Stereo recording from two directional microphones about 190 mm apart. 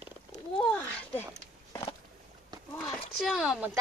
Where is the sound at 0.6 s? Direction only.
5° left (ahead or behind).